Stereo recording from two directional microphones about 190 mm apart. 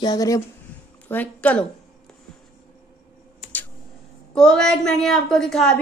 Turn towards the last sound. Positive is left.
turn(degrees=5)  # may be behind; listen again after turning